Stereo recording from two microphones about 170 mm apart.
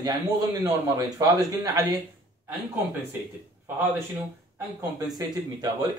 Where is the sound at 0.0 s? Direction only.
25° right (ahead or behind).